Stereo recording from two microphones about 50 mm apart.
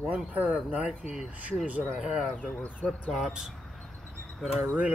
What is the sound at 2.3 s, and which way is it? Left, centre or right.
Speech, left.